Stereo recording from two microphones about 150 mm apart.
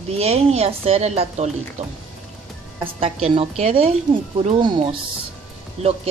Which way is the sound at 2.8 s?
40° right (ahead or behind).